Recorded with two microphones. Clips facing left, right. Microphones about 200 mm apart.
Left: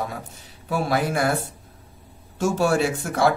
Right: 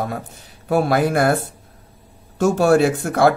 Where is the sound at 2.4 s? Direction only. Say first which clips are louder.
Right 6 dB; 60° right (ahead or behind).